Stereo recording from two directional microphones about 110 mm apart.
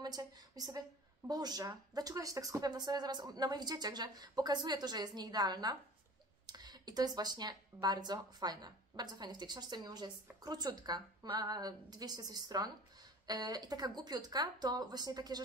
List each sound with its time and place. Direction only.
0.0 s speech: 35° right (ahead or behind)